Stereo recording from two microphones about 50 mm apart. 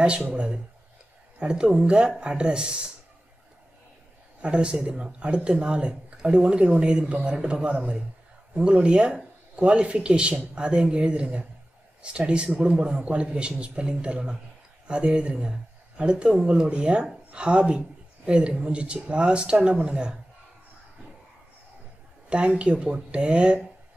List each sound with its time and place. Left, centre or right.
1.4 s speech: centre
4.4 s speech: centre
22.3 s speech: right